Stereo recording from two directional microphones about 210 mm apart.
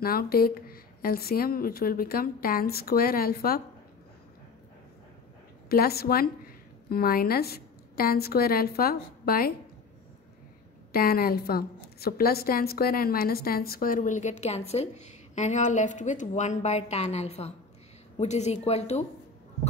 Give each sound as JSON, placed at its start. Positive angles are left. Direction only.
{"t": 0.0, "sound": "speech", "side_deg": 45}
{"t": 5.7, "sound": "speech", "side_deg": 45}
{"t": 10.9, "sound": "a woman's voice", "side_deg": 45}